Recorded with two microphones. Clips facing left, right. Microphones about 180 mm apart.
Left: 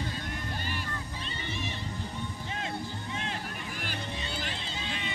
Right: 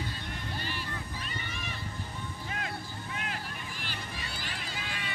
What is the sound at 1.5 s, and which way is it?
Music, 30° left (ahead or behind).